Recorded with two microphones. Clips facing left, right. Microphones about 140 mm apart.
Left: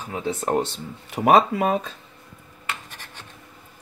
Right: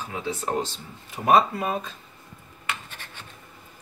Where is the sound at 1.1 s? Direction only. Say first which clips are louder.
Left 3 dB; 90° left.